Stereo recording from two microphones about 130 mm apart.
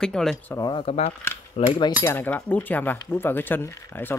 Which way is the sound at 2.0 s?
15° left (ahead or behind).